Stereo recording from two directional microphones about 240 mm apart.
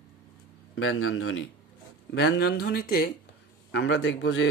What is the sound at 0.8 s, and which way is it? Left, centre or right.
A man's voice, left.